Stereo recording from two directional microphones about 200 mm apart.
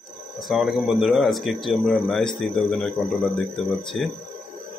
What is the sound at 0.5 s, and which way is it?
Speech, centre (ahead or behind).